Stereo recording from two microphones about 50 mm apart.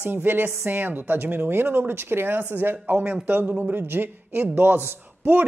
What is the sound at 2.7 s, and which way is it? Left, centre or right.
Speech, right.